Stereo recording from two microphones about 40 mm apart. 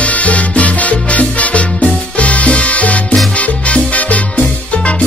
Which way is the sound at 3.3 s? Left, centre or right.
Left.